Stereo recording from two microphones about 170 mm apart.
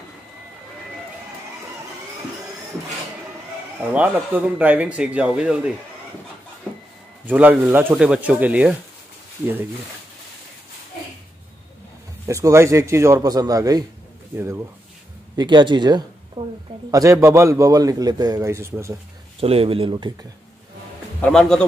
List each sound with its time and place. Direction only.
3.8 s speech: 10° right (ahead or behind)
6.7 s a sound: 5° left (ahead or behind)
7.2 s speech: 10° right (ahead or behind)
12.3 s a man's voice: 15° right (ahead or behind)
15.3 s a man's voice: 25° right (ahead or behind)
19.4 s speech: 35° right (ahead or behind)
21.2 s a man's voice: 5° left (ahead or behind)